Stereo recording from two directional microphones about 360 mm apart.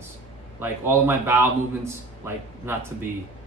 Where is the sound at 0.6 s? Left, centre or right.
Centre.